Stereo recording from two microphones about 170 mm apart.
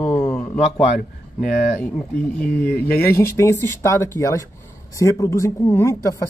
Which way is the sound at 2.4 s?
60° left (ahead or behind).